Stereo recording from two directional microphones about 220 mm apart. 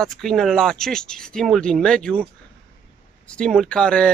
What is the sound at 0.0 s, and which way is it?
Speech, centre (ahead or behind).